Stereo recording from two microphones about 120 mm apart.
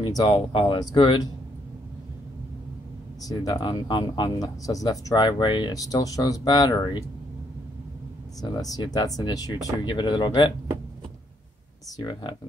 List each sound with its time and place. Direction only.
0.3 s speech: 45° left (ahead or behind)
3.3 s speech: 40° left (ahead or behind)
8.4 s speech: 30° left (ahead or behind)
12.0 s speech: 40° left (ahead or behind)